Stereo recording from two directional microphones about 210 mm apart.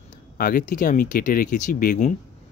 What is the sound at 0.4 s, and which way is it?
Speech, 40° left (ahead or behind).